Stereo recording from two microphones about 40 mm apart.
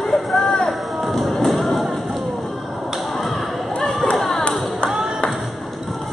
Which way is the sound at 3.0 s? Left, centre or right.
Centre.